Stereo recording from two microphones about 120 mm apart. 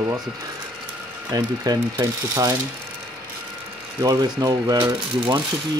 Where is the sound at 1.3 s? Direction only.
30° right (ahead or behind).